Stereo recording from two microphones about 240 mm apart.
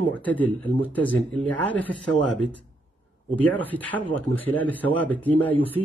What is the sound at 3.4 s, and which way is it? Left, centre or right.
Speech, centre.